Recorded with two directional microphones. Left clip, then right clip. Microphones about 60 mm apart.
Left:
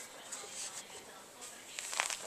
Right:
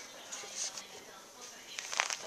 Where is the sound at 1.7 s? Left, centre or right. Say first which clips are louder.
Right 3 dB; centre.